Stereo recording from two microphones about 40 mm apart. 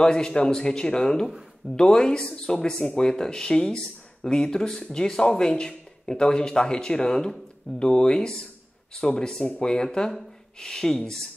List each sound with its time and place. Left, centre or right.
0.0 s a man's voice: centre